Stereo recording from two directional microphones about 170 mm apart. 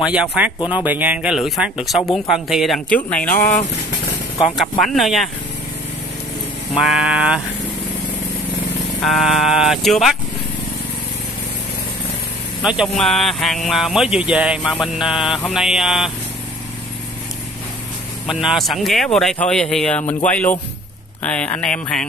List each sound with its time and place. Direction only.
0.0 s speech: 5° right (ahead or behind)
3.3 s speech: 50° left (ahead or behind)
4.6 s speech: centre (ahead or behind)
6.8 s speech: 5° right (ahead or behind)
9.0 s speech: centre (ahead or behind)
12.6 s speech: centre (ahead or behind)
18.3 s speech: centre (ahead or behind)
20.0 s speech: 40° left (ahead or behind)
20.2 s a sound: 10° left (ahead or behind)